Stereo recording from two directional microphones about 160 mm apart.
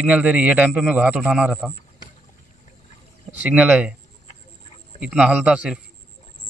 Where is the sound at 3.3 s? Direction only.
10° right (ahead or behind).